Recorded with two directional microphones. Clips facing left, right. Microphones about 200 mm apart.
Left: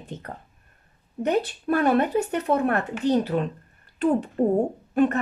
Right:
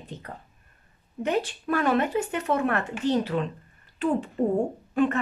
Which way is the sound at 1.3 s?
40° left (ahead or behind).